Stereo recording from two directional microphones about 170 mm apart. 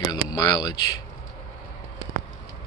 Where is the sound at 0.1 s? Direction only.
25° left (ahead or behind).